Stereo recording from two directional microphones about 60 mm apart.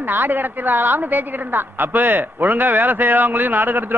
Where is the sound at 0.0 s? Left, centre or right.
Right.